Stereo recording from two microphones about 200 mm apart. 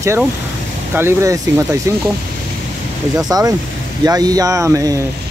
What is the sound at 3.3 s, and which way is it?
Speech, 20° right (ahead or behind).